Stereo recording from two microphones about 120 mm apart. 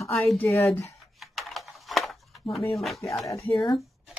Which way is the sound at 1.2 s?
Centre (ahead or behind).